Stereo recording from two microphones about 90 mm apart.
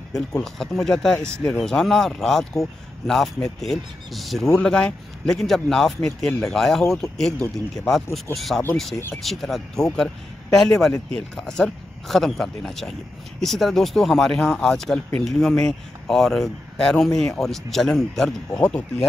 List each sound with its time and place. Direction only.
0.4 s a man's voice: 5° left (ahead or behind)